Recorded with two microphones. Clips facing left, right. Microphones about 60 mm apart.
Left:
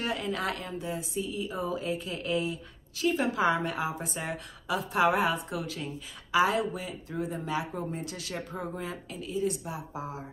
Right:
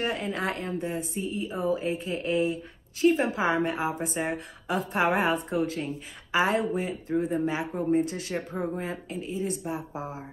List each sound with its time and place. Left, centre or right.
0.0 s a woman's voice: right